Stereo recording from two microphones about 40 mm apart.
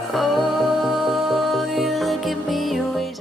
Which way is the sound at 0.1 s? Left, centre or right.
Centre.